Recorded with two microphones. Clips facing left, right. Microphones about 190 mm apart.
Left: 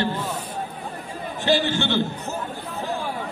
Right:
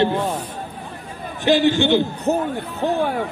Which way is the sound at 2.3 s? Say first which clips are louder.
Right 11 dB; 65° right (ahead or behind).